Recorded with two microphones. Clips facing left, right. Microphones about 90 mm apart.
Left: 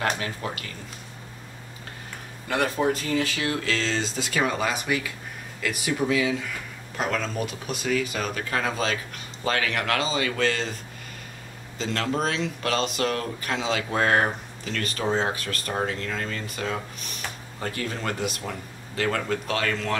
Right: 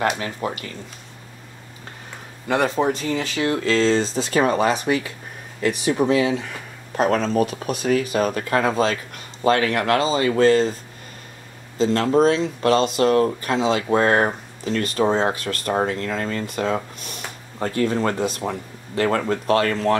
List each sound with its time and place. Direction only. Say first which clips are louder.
0.4 s speech: right 8 dB; 25° right (ahead or behind)
2.5 s speech: right 4 dB; 30° right (ahead or behind)
11.8 s speech: right 10 dB; 35° right (ahead or behind)